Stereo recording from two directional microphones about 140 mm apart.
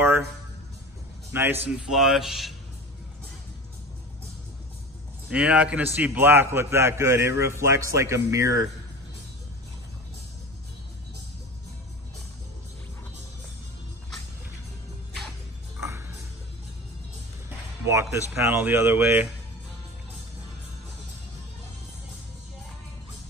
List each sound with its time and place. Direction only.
1.3 s speech: 15° right (ahead or behind)
1.9 s speech: 5° right (ahead or behind)
5.3 s a man's voice: 10° right (ahead or behind)
17.8 s music: 20° right (ahead or behind)
18.3 s speech: 15° right (ahead or behind)